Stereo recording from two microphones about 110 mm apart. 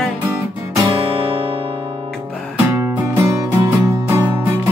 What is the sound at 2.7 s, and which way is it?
Music, 20° right (ahead or behind).